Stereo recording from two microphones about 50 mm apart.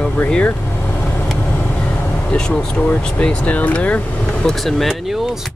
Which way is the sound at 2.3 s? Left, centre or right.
Centre.